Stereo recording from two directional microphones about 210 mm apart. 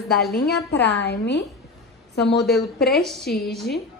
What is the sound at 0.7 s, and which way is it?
A woman's voice, 55° left (ahead or behind).